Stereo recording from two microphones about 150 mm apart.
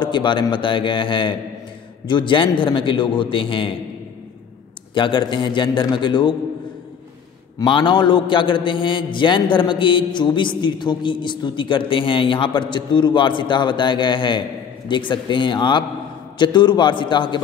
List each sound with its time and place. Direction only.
0.0 s a man's voice: 30° left (ahead or behind)
4.9 s a man's voice: 35° left (ahead or behind)
7.5 s a man's voice: 30° left (ahead or behind)